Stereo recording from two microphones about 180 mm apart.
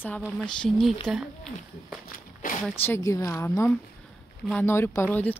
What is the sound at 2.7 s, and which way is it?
Speech, 10° left (ahead or behind).